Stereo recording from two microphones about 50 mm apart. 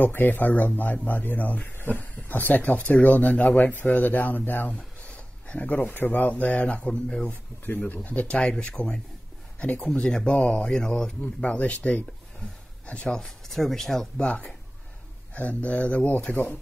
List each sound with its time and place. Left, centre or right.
0.0 s speech: left
4.7 s speech: left
6.9 s speech: centre
7.6 s speech: left
8.4 s speech: left
9.8 s speech: centre
11.4 s speech: left
13.1 s speech: centre
15.3 s speech: left